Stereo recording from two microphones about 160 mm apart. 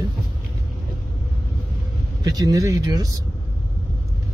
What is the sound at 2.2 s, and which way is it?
Speech, 25° right (ahead or behind).